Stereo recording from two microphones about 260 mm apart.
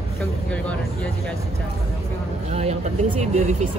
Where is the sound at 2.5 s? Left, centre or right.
Right.